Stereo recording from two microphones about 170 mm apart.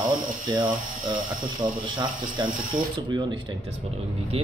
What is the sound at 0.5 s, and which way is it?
Speech, 30° right (ahead or behind).